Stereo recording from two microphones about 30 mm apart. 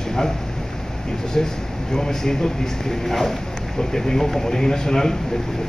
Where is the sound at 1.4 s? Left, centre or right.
Left.